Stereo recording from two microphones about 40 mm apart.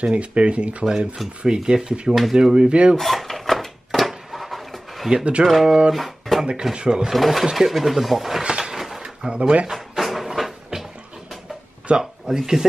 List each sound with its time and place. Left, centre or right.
0.0 s speech: right
0.8 s speech: centre
1.4 s speech: centre
3.0 s drawer open or close: centre
5.1 s speech: right
5.9 s guitar: centre
6.7 s speech: right
7.1 s speech: centre
8.5 s a sound: centre
8.7 s drawer open or close: centre
9.2 s speech: right
9.7 s a sound: centre
12.0 s speech: centre